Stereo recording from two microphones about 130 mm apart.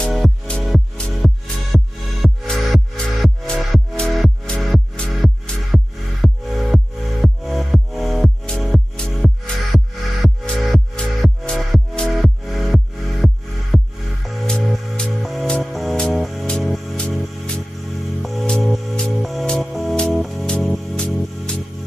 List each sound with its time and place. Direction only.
0.0 s music: 5° left (ahead or behind)